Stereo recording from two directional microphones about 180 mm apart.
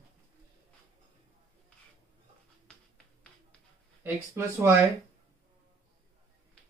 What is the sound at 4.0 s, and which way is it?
Speech, 10° right (ahead or behind).